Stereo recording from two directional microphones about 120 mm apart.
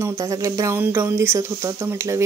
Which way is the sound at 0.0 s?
25° right (ahead or behind).